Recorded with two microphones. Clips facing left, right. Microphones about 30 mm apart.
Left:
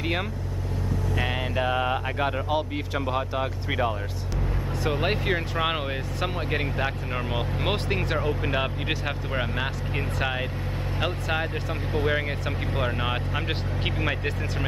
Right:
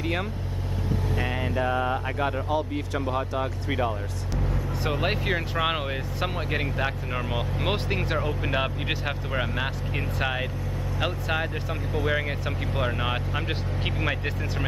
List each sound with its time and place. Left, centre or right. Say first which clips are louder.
1.1 s speech: left 2 dB; left
5.0 s speech: even; centre
12.1 s speech: even; centre